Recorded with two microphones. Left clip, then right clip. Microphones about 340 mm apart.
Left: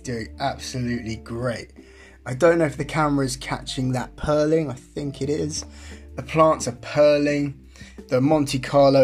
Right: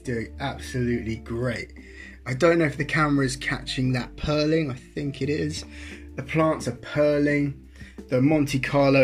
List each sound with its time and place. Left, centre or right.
0.0 s speech: left